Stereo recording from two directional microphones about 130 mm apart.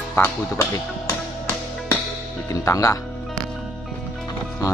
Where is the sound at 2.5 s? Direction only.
25° left (ahead or behind).